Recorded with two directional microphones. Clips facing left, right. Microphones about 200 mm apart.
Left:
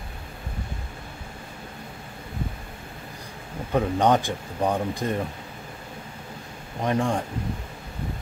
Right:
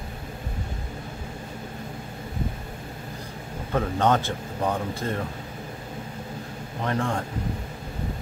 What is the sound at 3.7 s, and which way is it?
Speech, 15° left (ahead or behind).